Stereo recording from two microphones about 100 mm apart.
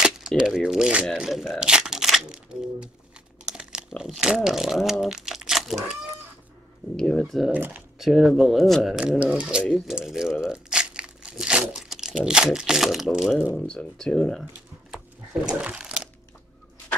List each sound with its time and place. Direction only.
0.0 s speech: 5° right (ahead or behind)
1.5 s a sound: 5° right (ahead or behind)
3.4 s speech: 5° right (ahead or behind)
7.0 s speech: 5° left (ahead or behind)
7.5 s speech: 15° right (ahead or behind)
8.0 s speech: centre (ahead or behind)
9.2 s speech: 10° right (ahead or behind)
10.4 s crumpling: 5° right (ahead or behind)
13.6 s speech: 10° left (ahead or behind)
15.4 s speech: 10° right (ahead or behind)